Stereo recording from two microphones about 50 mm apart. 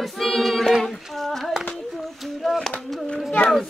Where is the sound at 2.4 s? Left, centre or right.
Centre.